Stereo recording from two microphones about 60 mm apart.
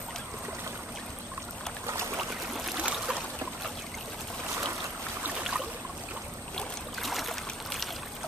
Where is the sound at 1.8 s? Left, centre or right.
Right.